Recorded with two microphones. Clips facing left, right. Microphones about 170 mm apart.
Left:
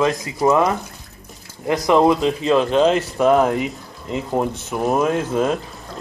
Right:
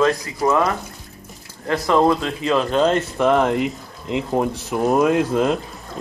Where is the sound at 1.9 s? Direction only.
15° left (ahead or behind).